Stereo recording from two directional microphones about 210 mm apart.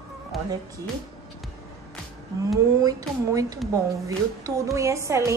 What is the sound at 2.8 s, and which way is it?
A woman's voice, 15° right (ahead or behind).